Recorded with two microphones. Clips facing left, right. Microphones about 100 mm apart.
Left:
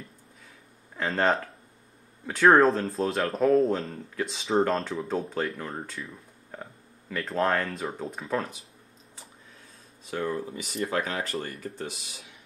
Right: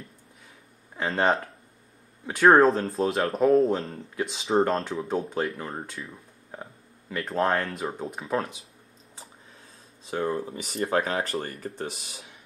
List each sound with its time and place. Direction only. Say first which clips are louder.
0.9 s speech: right 1 dB; 10° right (ahead or behind)
10.0 s speech: right 2 dB; 30° right (ahead or behind)